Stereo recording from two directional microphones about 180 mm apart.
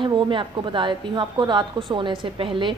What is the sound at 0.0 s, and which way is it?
A woman's voice, 25° right (ahead or behind).